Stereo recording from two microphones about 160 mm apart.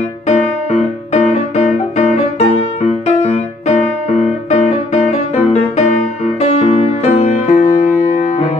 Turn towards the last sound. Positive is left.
turn(degrees=40)  # may be behind; listen again after turning